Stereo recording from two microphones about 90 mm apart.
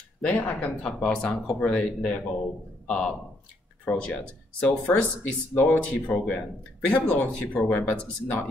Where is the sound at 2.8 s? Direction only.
10° left (ahead or behind).